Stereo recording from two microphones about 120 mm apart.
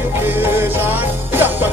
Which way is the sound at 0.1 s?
20° right (ahead or behind).